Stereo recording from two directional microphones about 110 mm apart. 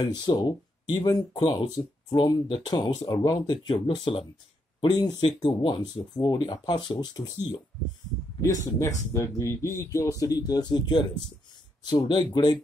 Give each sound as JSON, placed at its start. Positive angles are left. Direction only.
{"t": 0.0, "sound": "speech", "side_deg": 40}
{"t": 12.1, "sound": "speech", "side_deg": 40}